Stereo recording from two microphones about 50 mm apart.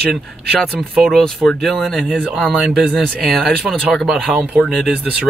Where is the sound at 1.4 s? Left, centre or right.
Centre.